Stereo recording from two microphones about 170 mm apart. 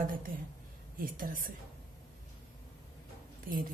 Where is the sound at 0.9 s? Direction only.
55° right (ahead or behind).